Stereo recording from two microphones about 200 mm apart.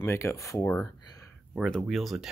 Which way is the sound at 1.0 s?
15° left (ahead or behind).